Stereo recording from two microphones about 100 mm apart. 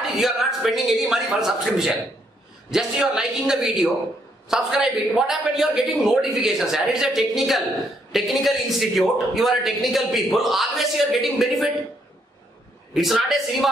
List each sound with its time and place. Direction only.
0.1 s a man's voice: 5° right (ahead or behind)
12.9 s a man's voice: centre (ahead or behind)